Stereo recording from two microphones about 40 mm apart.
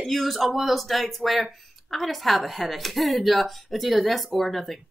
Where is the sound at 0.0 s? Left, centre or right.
Centre.